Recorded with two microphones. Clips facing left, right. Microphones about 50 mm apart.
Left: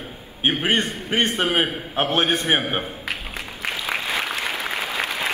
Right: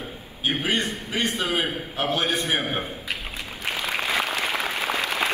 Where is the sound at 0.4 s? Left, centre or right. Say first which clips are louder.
Left 4 dB; left.